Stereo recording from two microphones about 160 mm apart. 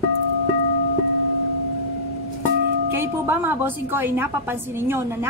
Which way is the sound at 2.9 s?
15° right (ahead or behind).